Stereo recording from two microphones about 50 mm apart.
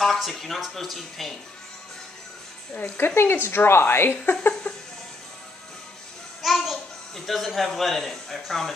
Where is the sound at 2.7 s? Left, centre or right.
Left.